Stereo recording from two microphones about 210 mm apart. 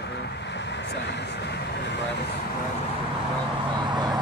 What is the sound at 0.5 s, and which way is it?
Speech, 55° left (ahead or behind).